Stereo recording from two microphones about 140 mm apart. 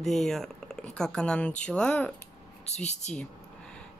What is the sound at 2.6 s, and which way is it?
Speech, 55° left (ahead or behind).